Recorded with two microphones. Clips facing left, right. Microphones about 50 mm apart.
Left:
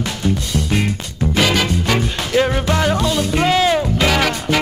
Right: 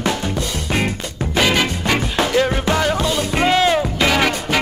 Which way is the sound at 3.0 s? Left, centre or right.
Centre.